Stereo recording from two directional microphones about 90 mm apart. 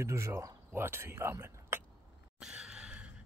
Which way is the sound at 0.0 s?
30° right (ahead or behind).